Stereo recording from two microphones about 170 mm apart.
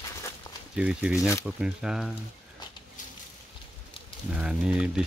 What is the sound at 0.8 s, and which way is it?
Speech, 5° right (ahead or behind).